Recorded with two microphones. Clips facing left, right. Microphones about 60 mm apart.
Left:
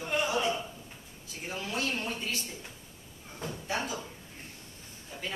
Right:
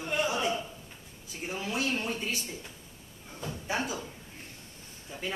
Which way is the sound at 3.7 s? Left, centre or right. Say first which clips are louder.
Right 2 dB; centre.